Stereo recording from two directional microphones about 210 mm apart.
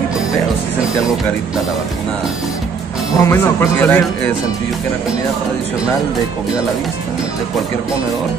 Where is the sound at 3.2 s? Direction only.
10° left (ahead or behind).